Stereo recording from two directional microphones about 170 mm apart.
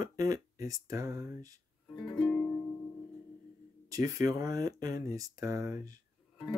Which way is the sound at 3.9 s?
20° right (ahead or behind).